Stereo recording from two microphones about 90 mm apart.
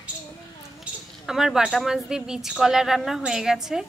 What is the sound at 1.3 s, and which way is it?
A woman's voice, 5° right (ahead or behind).